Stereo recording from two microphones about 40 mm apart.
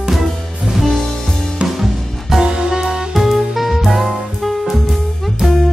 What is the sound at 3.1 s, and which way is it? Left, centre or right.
Music, centre.